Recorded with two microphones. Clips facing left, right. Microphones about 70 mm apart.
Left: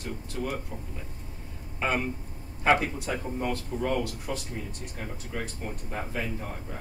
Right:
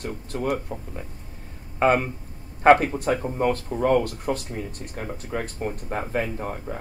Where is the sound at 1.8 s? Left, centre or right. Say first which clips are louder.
Right 8 dB; right.